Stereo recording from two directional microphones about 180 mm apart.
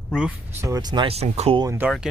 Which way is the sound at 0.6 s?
20° right (ahead or behind).